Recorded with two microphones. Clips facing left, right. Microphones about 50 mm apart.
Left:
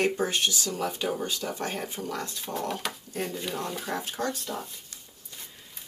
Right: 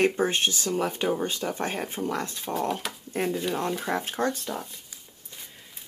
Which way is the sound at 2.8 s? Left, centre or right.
Centre.